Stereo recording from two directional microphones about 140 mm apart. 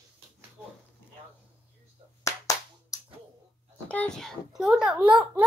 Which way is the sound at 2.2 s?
25° left (ahead or behind).